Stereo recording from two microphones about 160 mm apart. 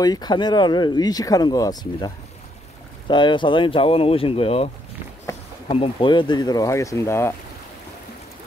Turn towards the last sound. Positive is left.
turn(degrees=15)  # may be behind; listen again after turning